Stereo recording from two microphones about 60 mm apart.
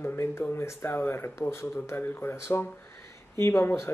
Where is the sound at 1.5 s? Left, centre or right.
Left.